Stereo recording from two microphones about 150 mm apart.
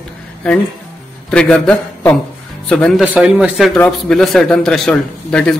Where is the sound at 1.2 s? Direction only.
5° left (ahead or behind).